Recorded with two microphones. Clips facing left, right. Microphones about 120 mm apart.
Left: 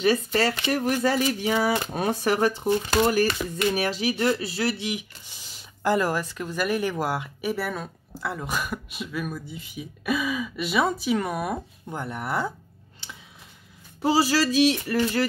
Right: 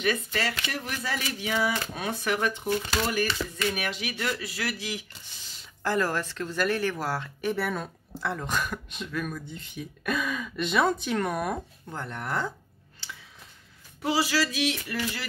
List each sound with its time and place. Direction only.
0.0 s speech: 35° left (ahead or behind); by 7.5 s 15° left (ahead or behind)
7.5 s speech: centre (ahead or behind)
14.0 s speech: 35° left (ahead or behind)